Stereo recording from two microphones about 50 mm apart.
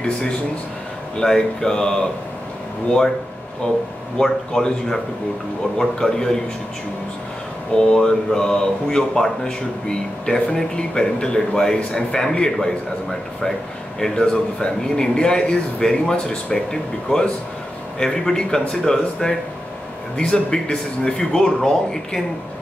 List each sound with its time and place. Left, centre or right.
1.1 s speech: centre
3.6 s speech: left
4.2 s speech: centre
7.7 s speech: centre